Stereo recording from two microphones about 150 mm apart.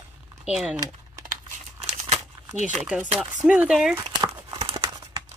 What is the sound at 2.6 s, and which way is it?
A woman's voice, 10° right (ahead or behind).